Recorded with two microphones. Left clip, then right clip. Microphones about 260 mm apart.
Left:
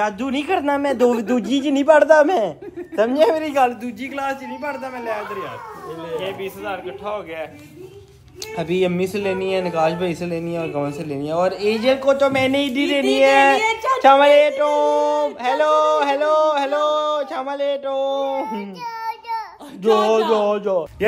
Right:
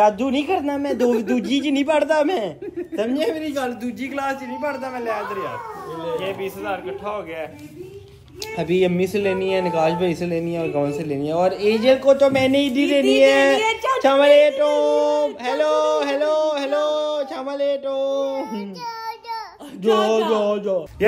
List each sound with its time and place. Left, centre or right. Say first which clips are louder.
0.0 s a man's voice: right 5 dB; centre
0.9 s a man's voice: even; left
1.3 s a man's voice: left 1 dB; centre
8.5 s a man's voice: right 1 dB; centre
19.0 s child singing: left 3 dB; centre